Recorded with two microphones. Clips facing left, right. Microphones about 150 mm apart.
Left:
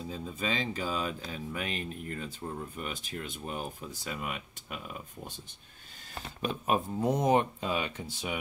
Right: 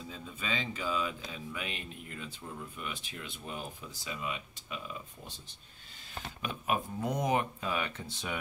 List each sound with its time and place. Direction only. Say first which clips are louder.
0.1 s speech: left 4 dB; 40° left (ahead or behind); by 5.3 s 55° left (ahead or behind)
6.4 s speech: left 4 dB; 30° left (ahead or behind)